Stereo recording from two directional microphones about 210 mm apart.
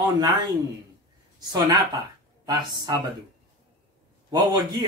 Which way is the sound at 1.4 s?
20° right (ahead or behind).